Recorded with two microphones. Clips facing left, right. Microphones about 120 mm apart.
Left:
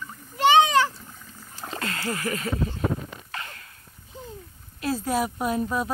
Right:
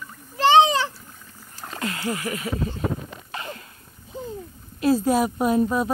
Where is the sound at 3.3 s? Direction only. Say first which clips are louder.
Right 6 dB; 25° right (ahead or behind).